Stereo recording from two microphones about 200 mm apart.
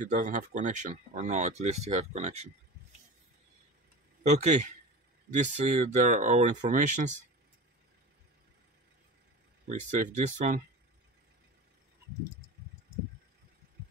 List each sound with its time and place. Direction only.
0.0 s speech: 40° right (ahead or behind)
4.2 s speech: 35° right (ahead or behind)
9.7 s speech: 35° right (ahead or behind)